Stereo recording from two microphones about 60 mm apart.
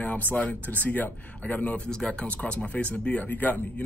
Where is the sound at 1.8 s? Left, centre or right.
Centre.